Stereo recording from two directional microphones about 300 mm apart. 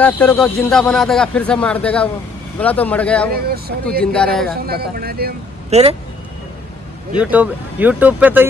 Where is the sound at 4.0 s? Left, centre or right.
Centre.